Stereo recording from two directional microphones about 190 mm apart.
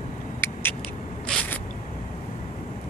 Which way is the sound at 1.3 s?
5° left (ahead or behind).